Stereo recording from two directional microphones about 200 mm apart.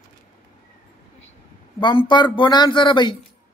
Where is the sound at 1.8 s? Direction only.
25° left (ahead or behind).